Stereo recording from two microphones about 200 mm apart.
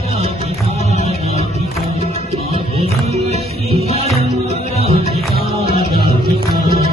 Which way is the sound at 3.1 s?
30° right (ahead or behind).